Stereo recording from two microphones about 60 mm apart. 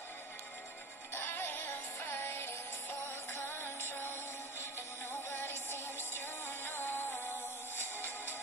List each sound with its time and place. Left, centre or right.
1.1 s music: left
5.3 s music: left